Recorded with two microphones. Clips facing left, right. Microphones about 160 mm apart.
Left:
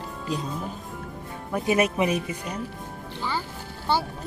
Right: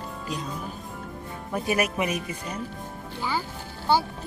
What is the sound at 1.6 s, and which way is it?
Speech, 25° left (ahead or behind).